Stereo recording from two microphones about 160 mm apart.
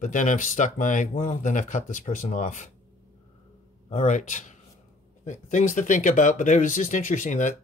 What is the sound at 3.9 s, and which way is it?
Speech, 45° left (ahead or behind).